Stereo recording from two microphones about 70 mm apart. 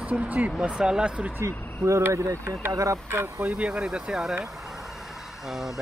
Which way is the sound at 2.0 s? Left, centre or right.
Right.